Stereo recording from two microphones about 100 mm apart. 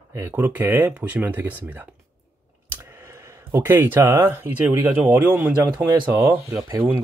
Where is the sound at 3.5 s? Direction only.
25° right (ahead or behind).